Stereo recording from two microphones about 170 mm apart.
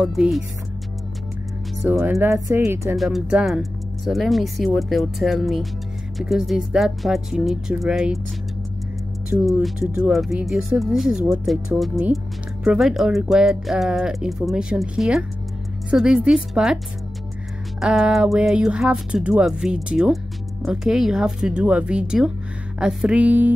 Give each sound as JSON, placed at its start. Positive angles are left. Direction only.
{"t": 0.0, "sound": "speech", "side_deg": 0}
{"t": 1.8, "sound": "speech", "side_deg": -10}
{"t": 3.0, "sound": "speech", "side_deg": 0}
{"t": 9.5, "sound": "speech", "side_deg": 0}